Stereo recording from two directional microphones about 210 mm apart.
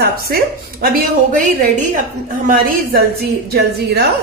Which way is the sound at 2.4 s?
45° right (ahead or behind).